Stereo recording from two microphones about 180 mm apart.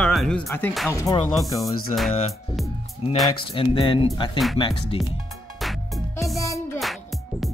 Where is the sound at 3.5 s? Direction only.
30° left (ahead or behind).